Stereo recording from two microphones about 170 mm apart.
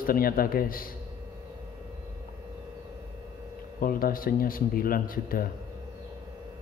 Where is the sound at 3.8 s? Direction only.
55° left (ahead or behind).